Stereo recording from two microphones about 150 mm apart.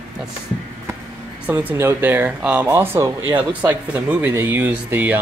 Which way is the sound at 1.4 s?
15° right (ahead or behind).